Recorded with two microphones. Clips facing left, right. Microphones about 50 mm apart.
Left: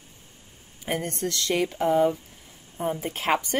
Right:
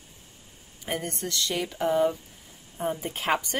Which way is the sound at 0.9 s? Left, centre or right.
Left.